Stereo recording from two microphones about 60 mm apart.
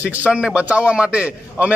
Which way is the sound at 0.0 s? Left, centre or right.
Right.